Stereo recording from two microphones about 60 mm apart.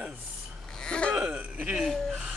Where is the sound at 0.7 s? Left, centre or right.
Centre.